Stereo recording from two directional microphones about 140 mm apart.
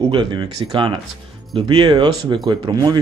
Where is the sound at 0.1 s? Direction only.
35° right (ahead or behind).